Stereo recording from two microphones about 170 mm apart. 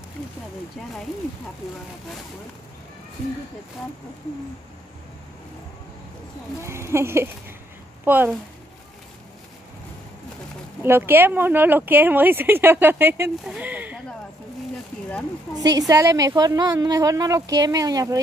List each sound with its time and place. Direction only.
6.6 s speech: 15° right (ahead or behind)
10.8 s speech: 15° right (ahead or behind)
15.5 s a woman's voice: 20° right (ahead or behind)